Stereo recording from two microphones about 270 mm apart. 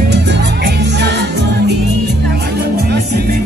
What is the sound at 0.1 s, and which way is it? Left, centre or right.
Music, right.